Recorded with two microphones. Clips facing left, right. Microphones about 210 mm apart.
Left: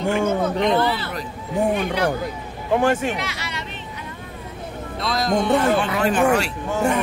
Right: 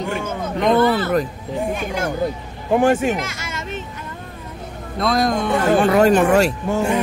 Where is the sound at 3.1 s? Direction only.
45° right (ahead or behind).